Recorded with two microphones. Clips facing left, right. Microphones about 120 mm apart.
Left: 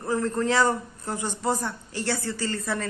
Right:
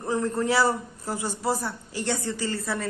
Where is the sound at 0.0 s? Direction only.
15° right (ahead or behind).